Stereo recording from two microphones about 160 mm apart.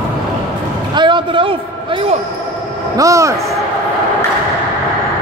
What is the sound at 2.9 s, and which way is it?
Speech, 20° right (ahead or behind).